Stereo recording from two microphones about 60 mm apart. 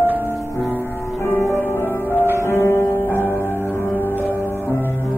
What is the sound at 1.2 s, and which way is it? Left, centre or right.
Music, left.